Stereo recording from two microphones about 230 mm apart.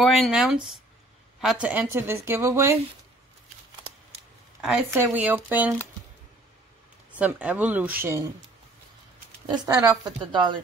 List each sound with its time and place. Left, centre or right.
0.0 s a woman's voice: centre
4.6 s a woman's voice: centre
7.1 s a woman's voice: centre
9.5 s a woman's voice: centre